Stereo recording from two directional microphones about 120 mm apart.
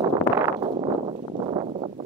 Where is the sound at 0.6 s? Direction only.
45° right (ahead or behind).